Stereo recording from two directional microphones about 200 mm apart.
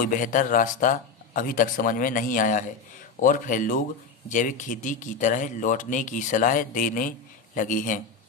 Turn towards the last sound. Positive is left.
turn(degrees=40)  # may be behind; listen again after turning